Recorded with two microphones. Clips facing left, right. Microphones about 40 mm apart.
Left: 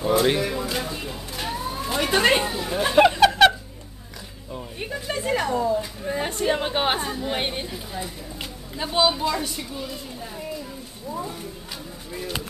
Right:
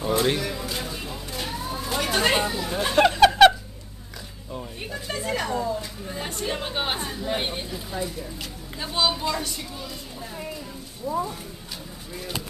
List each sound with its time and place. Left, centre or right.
0.2 s a sound: centre
1.8 s speech: centre
5.8 s speech: centre
7.1 s a woman's voice: centre
11.1 s speech: centre